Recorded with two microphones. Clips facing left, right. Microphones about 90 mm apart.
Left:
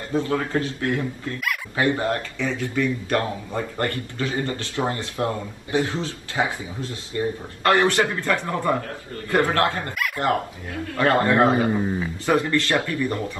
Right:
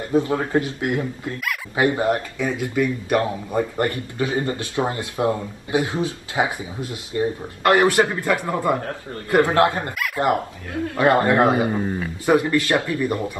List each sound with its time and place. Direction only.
0.1 s a man's voice: 20° right (ahead or behind)
9.9 s speech: centre (ahead or behind)
10.2 s a man's voice: 20° right (ahead or behind)
11.7 s speech: centre (ahead or behind)
12.3 s speech: 15° right (ahead or behind)